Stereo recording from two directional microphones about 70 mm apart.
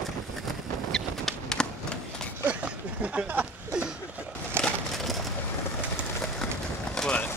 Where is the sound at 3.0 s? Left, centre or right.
Right.